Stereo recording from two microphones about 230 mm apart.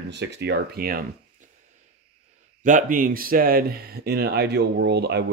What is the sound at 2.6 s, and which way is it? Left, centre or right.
Speech, right.